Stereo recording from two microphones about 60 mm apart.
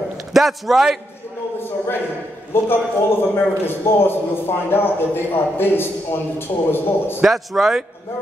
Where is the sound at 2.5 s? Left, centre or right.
Left.